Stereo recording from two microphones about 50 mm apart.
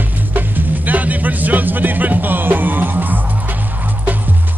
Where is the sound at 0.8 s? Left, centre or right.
Right.